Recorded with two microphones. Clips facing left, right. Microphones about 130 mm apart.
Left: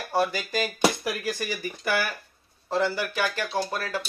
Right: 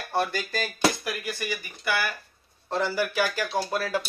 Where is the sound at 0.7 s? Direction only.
25° left (ahead or behind).